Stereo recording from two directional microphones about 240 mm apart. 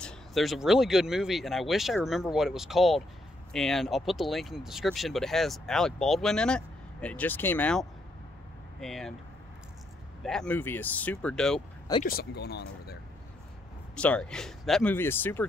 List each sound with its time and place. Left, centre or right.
0.0 s speech: centre
8.8 s speech: centre
10.2 s speech: centre
12.0 s speech: left
13.9 s speech: centre